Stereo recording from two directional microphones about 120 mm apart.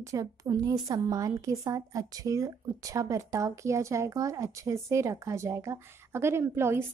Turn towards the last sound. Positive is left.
turn(degrees=-20)  # may be behind; listen again after turning